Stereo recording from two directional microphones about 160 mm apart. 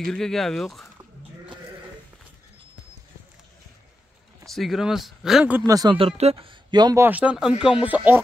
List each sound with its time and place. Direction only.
0.0 s speech: centre (ahead or behind)
4.5 s speech: centre (ahead or behind)
5.7 s speech: 20° right (ahead or behind)
5.9 s speech: 40° right (ahead or behind)
7.0 s speech: 10° right (ahead or behind)